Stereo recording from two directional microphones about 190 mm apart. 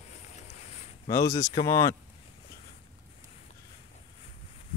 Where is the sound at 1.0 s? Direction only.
15° left (ahead or behind).